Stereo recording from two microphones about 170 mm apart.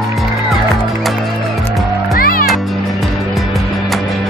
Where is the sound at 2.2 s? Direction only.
55° left (ahead or behind).